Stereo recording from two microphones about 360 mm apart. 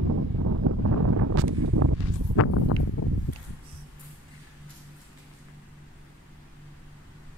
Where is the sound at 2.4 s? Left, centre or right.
Left.